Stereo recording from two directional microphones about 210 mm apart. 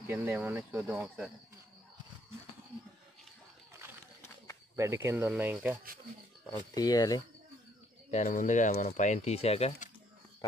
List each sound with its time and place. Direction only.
0.1 s speech: 10° right (ahead or behind)
4.7 s speech: 10° right (ahead or behind)
6.7 s speech: 20° left (ahead or behind)
8.1 s speech: 35° left (ahead or behind)